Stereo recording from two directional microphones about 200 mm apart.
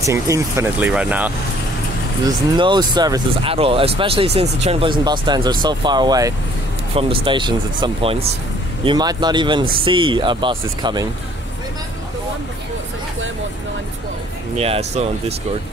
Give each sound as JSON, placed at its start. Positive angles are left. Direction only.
{"t": 0.0, "sound": "speech", "side_deg": -15}
{"t": 2.2, "sound": "speech", "side_deg": -20}
{"t": 14.6, "sound": "speech", "side_deg": -30}